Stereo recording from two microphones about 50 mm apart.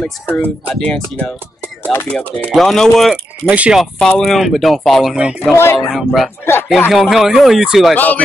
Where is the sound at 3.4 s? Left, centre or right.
Right.